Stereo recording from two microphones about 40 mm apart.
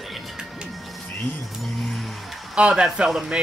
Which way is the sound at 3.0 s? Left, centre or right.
Centre.